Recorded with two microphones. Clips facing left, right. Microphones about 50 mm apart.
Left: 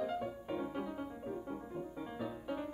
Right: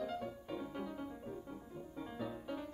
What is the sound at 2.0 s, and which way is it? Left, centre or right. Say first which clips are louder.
Music: left 2 dB; centre.